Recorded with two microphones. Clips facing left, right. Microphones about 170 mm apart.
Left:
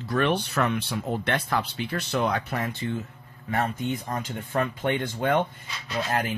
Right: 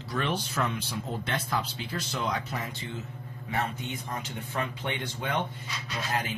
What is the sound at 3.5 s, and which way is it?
A man's voice, 50° left (ahead or behind).